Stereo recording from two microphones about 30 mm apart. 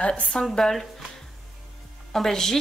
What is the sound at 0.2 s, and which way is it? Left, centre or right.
Speech, left.